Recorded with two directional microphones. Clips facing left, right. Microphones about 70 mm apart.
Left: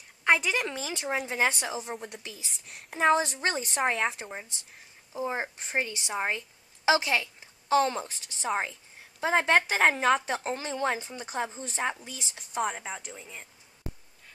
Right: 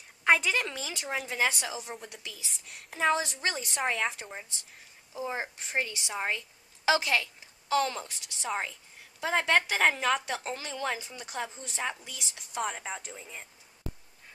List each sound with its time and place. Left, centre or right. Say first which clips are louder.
0.2 s a sound: even; centre
0.5 s a woman's voice: left 1 dB; centre
1.9 s speech: left 4 dB; centre
3.0 s a woman's voice: left 4 dB; left
3.8 s a woman's voice: left 2 dB; centre; by 12.6 s left
12.6 s speech: left 2 dB; centre